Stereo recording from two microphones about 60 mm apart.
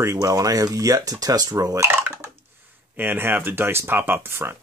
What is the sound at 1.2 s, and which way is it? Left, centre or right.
Speech, right.